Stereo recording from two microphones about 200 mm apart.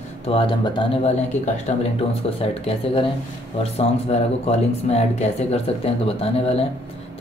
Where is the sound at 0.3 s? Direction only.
25° left (ahead or behind).